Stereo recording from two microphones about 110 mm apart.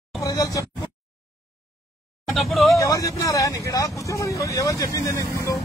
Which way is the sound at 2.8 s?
30° left (ahead or behind).